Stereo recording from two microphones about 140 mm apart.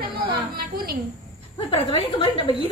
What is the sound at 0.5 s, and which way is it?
Speech, 90° right.